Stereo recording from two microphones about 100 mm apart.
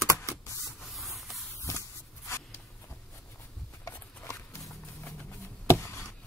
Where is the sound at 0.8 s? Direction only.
Centre (ahead or behind).